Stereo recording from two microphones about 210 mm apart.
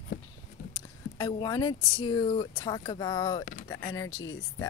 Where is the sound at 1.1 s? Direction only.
20° left (ahead or behind).